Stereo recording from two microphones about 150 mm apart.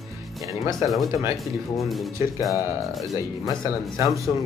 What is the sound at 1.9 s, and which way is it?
Speech, centre (ahead or behind).